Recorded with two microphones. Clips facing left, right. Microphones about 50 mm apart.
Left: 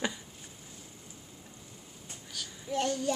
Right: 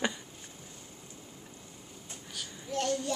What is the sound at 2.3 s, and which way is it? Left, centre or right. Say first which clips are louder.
Child singing: even; centre.